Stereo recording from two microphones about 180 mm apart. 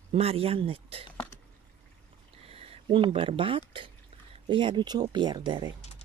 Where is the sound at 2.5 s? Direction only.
30° right (ahead or behind).